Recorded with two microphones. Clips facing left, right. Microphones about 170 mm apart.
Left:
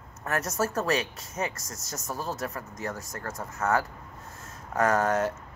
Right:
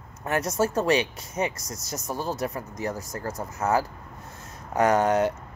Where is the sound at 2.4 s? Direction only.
15° right (ahead or behind).